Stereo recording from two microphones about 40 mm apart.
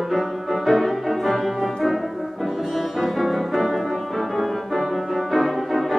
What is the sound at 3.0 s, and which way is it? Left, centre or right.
Music, centre.